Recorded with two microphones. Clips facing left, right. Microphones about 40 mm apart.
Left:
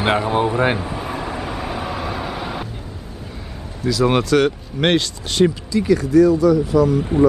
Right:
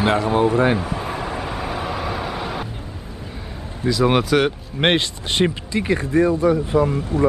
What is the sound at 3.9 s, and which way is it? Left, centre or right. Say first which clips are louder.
Speech: left 1 dB; centre.